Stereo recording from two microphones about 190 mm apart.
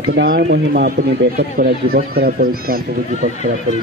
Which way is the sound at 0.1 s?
60° right (ahead or behind).